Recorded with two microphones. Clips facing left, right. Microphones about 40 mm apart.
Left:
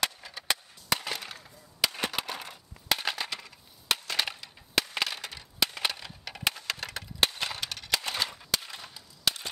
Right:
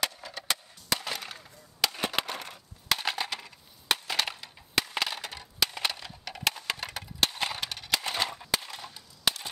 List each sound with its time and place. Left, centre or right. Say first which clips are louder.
0.0 s chop: left 1 dB; centre
0.5 s skateboard: left 2 dB; centre
1.0 s skateboard: even; centre
2.9 s crushing: right 1 dB; centre
3.3 s a sound: right 1 dB; centre
6.7 s a sound: right 1 dB; centre
8.7 s cap gun: right 1 dB; centre
9.3 s cap gun: right 1 dB; centre